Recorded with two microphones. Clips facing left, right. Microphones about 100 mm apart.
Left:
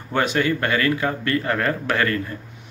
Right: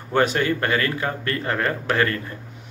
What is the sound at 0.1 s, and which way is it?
Speech, 35° right (ahead or behind).